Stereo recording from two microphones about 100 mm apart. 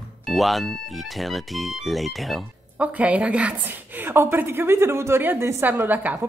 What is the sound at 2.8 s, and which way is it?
A woman's voice, 15° right (ahead or behind).